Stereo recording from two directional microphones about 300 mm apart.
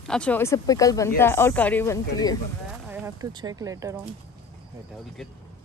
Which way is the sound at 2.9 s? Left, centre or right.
Centre.